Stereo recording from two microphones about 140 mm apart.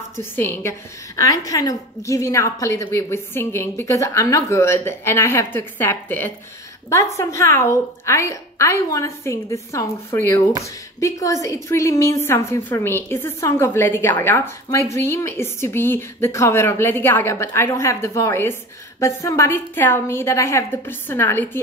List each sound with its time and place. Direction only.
0.1 s a woman's voice: 15° left (ahead or behind)